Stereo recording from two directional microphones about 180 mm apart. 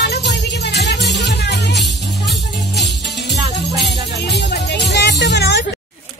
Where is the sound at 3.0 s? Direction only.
70° left (ahead or behind).